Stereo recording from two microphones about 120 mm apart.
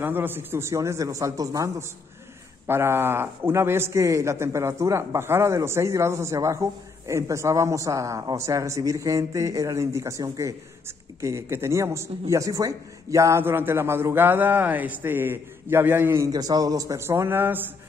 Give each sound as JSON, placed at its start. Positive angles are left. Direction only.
{"t": 0.0, "sound": "speech", "side_deg": -15}
{"t": 16.3, "sound": "speech", "side_deg": -30}